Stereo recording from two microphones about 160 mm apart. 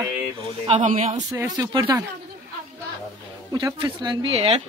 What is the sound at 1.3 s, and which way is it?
Speech, 25° right (ahead or behind).